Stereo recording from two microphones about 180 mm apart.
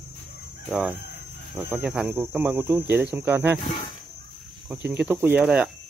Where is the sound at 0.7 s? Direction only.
5° right (ahead or behind).